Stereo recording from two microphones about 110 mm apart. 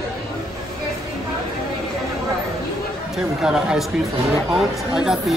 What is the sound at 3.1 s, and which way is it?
Speech, 5° right (ahead or behind).